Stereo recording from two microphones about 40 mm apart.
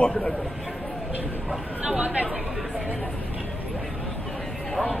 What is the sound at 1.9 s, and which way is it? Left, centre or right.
Speech, right.